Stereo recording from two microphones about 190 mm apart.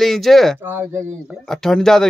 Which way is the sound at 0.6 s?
10° right (ahead or behind).